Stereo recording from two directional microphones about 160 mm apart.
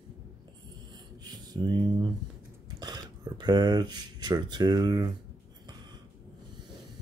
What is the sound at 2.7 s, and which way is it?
Speech, 25° right (ahead or behind).